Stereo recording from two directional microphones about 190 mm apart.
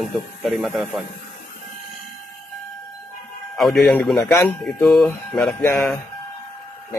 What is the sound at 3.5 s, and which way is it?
Speech, centre (ahead or behind).